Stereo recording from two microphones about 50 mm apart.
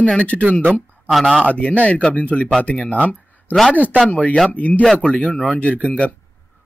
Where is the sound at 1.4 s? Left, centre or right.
Left.